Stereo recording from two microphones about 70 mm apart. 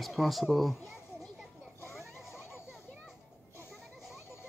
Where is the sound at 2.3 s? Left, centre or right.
Left.